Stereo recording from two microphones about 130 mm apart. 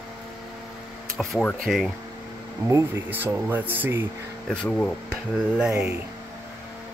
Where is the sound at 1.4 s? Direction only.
Centre (ahead or behind).